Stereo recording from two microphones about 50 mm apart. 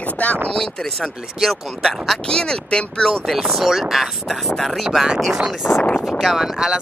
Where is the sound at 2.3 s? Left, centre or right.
Centre.